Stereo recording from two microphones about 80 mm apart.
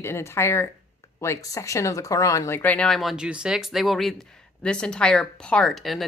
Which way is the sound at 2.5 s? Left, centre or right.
Centre.